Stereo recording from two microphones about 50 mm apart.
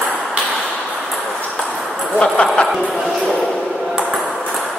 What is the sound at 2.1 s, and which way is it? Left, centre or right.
Speech, left.